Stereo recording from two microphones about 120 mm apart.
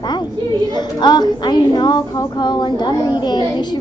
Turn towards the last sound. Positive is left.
turn(degrees=35)  # may be behind; listen again after turning